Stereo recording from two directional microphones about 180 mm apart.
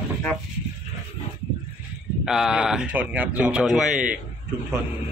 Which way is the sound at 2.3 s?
5° right (ahead or behind).